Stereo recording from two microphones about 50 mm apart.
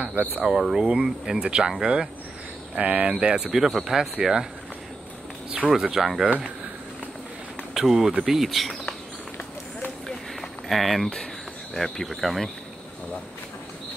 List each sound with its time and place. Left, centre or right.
0.0 s speech: right
0.6 s speech: centre
2.8 s speech: right
3.3 s speech: centre
5.7 s speech: centre
7.7 s speech: centre
10.7 s speech: centre